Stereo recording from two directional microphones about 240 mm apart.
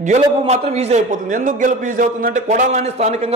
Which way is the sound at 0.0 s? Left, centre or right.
Right.